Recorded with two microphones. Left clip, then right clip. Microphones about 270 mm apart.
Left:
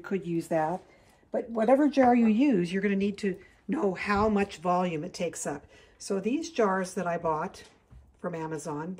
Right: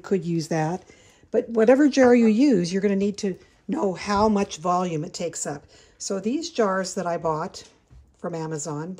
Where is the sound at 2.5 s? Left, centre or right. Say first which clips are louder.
Right 5 dB; centre.